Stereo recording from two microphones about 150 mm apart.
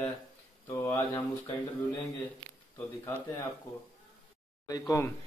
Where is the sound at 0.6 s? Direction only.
15° left (ahead or behind).